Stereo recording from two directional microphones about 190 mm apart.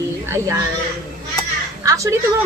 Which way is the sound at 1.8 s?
15° right (ahead or behind).